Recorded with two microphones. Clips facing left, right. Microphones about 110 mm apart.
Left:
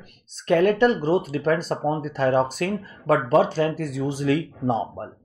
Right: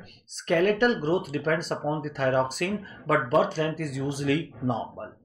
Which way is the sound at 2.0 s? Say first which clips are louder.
Left 4 dB; 30° left (ahead or behind).